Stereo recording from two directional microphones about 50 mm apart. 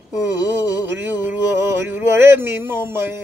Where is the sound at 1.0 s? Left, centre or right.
Right.